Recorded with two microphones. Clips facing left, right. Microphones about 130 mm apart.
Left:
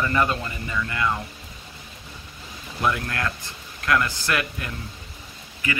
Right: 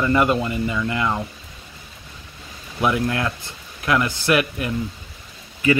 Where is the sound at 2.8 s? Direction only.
15° right (ahead or behind).